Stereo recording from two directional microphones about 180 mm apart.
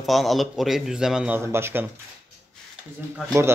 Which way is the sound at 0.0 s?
Centre (ahead or behind).